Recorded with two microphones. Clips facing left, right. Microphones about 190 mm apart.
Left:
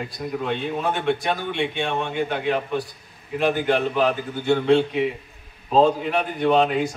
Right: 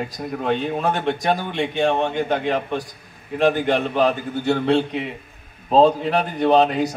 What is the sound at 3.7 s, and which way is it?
A man's voice, 40° right (ahead or behind).